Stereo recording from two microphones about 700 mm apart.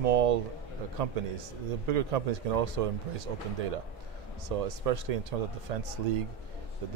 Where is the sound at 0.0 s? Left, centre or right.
Right.